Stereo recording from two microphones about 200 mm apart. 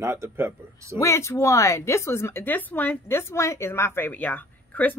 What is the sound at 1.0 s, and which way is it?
A woman's voice, 15° left (ahead or behind).